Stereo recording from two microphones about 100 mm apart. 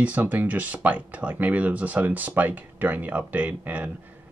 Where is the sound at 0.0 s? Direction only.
15° right (ahead or behind).